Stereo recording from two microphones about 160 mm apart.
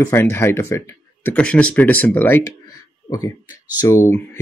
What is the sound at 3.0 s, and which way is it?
Speech, 25° left (ahead or behind).